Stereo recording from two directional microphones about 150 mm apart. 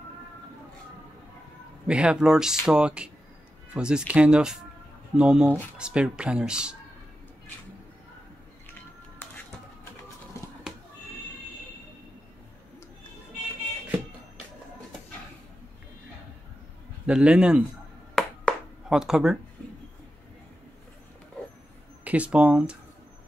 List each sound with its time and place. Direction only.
1.9 s speech: 5° right (ahead or behind)
17.0 s speech: 5° right (ahead or behind)
18.1 s a sound: centre (ahead or behind)
22.0 s speech: 10° right (ahead or behind)